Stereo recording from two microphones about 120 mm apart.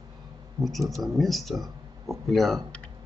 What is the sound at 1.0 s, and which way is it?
Speech, centre (ahead or behind).